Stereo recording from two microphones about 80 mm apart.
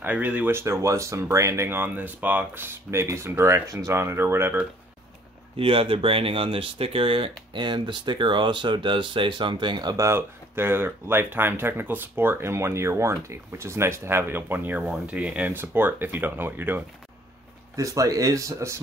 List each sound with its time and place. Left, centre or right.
0.0 s speech: centre
0.5 s speech: right
6.4 s speech: right
9.9 s speech: right; by 15.5 s centre
15.5 s speech: right
17.7 s speech: right